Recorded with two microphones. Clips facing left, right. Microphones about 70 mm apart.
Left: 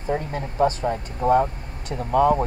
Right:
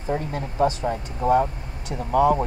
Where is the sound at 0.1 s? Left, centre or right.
Left.